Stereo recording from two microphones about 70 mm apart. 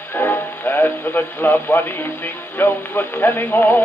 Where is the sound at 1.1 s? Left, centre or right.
Left.